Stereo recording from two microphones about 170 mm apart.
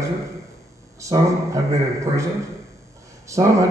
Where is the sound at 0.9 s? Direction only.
20° right (ahead or behind).